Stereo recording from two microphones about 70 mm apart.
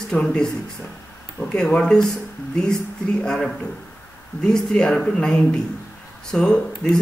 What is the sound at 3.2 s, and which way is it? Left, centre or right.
Speech, centre.